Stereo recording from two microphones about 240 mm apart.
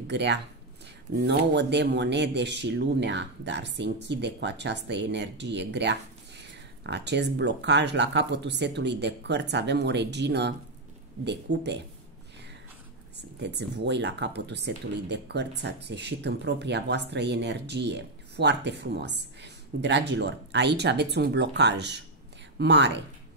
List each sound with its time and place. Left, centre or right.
0.0 s speech: right
13.1 s speech: right